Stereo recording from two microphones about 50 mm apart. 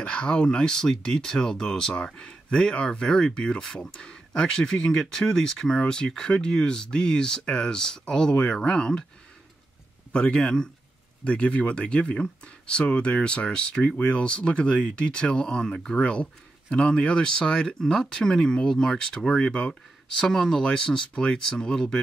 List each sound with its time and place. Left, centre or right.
0.0 s speech: left
10.1 s speech: centre
19.7 s speech: centre